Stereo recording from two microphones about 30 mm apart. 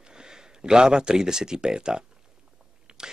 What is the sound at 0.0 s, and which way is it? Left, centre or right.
Speech, right.